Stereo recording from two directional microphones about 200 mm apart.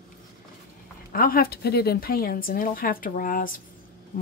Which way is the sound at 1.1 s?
45° left (ahead or behind).